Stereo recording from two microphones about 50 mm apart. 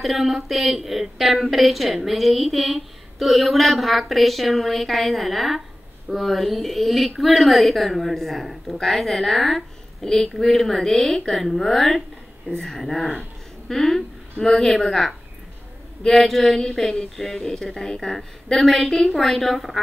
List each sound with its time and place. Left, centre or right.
0.0 s a woman's voice: centre